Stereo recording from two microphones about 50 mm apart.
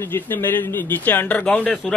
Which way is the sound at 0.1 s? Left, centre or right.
Left.